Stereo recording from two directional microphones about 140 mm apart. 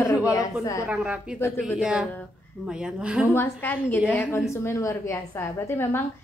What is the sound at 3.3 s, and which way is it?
A woman's voice, 15° left (ahead or behind).